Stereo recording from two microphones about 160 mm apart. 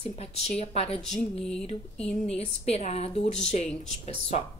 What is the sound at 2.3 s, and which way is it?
A woman's voice, 40° left (ahead or behind).